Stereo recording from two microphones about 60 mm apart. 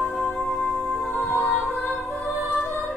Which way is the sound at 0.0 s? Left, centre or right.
Centre.